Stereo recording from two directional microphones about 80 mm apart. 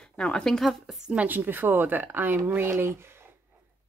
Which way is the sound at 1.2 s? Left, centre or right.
Right.